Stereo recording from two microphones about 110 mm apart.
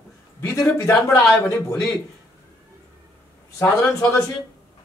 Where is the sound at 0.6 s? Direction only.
30° left (ahead or behind).